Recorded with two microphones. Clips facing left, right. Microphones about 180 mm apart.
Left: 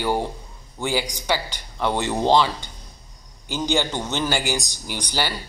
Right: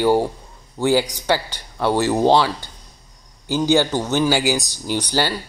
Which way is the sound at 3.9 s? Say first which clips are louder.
Right 6 dB; 10° right (ahead or behind).